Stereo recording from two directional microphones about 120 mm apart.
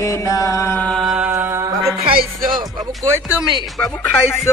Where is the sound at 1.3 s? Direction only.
20° right (ahead or behind).